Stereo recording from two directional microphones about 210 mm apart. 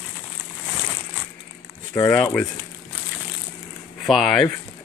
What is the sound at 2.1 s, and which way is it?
Speech, 5° left (ahead or behind).